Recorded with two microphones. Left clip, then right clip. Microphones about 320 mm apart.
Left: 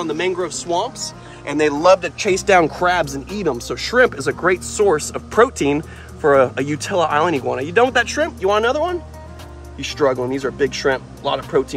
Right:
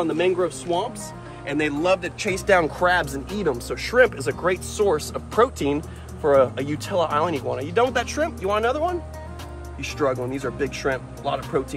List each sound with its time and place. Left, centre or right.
0.7 s speech: centre
2.1 s speech: left